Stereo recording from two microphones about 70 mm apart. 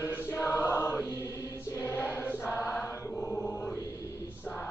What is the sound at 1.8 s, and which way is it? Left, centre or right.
Choir, left.